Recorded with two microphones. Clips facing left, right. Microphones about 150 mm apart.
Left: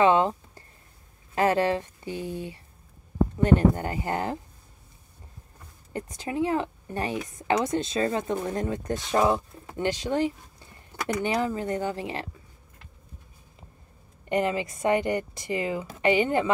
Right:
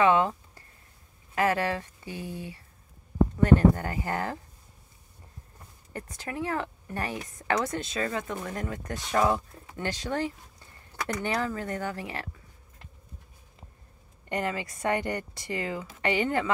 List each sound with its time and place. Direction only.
0.0 s a sound: 25° left (ahead or behind)
1.3 s speech: 25° left (ahead or behind)
5.9 s speech: 20° left (ahead or behind)
14.3 s speech: 20° left (ahead or behind)